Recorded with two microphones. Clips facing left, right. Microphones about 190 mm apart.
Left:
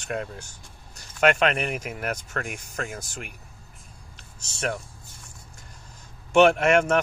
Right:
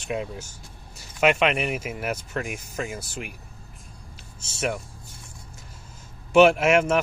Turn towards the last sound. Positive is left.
turn(degrees=-5)  # may be behind; listen again after turning